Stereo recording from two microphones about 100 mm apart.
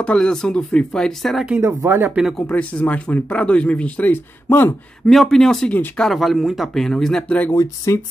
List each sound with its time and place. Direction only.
0.0 s speech: 10° left (ahead or behind)
1.6 s speech: 20° right (ahead or behind)
2.5 s speech: 15° left (ahead or behind)
5.0 s speech: 5° left (ahead or behind)
6.0 s speech: centre (ahead or behind)
7.5 s speech: 30° left (ahead or behind)